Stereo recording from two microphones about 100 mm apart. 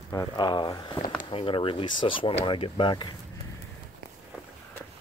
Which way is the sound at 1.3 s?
60° left (ahead or behind).